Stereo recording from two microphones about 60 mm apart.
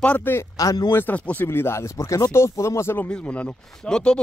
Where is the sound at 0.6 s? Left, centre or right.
Left.